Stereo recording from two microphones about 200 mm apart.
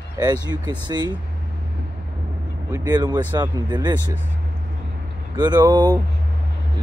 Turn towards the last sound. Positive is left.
turn(degrees=-20)  # may be behind; listen again after turning